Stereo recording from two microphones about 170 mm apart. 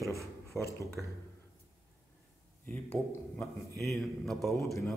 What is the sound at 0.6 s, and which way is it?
Speech, 20° left (ahead or behind).